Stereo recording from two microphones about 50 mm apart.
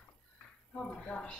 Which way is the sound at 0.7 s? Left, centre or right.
Centre.